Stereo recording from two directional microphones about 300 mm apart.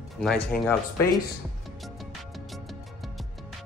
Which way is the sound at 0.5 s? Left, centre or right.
Centre.